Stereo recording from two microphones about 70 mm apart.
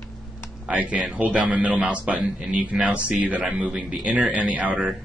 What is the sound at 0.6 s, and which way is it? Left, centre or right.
A man's voice, right.